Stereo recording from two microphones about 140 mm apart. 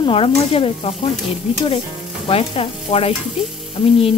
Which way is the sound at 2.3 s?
45° left (ahead or behind).